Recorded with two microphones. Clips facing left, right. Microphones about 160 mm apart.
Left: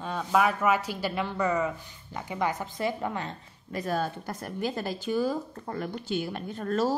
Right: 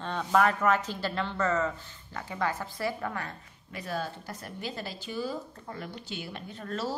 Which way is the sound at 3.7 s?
45° left (ahead or behind).